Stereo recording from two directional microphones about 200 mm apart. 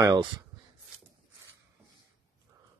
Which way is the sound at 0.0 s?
20° right (ahead or behind).